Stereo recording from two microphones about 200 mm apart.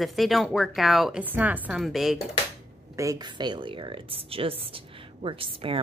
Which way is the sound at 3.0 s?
20° right (ahead or behind).